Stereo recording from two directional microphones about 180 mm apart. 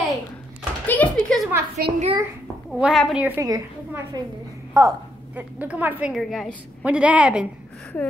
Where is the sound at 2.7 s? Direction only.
Centre (ahead or behind).